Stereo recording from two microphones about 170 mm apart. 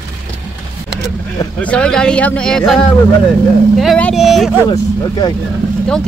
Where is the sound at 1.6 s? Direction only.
5° left (ahead or behind).